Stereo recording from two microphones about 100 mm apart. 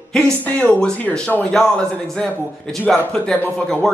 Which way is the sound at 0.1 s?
10° left (ahead or behind).